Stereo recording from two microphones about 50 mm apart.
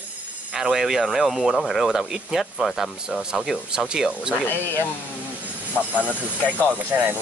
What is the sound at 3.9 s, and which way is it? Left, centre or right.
Speech, centre.